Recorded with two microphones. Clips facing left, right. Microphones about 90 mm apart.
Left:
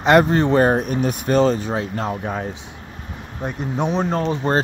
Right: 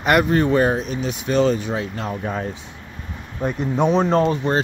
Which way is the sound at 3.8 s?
40° right (ahead or behind).